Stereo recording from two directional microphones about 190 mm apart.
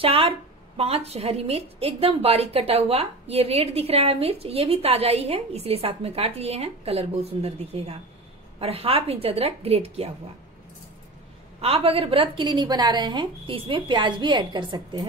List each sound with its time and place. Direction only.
0.0 s a woman's voice: 30° right (ahead or behind)
11.6 s a woman's voice: 30° right (ahead or behind)